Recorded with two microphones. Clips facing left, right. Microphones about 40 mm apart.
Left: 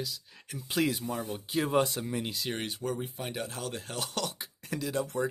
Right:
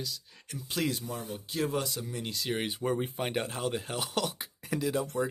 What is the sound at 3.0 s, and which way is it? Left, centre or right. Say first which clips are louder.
Speech: right 4 dB; right.